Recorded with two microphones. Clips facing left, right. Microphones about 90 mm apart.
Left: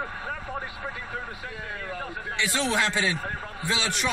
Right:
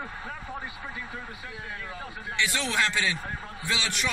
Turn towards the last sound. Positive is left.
turn(degrees=25)  # may be behind; listen again after turning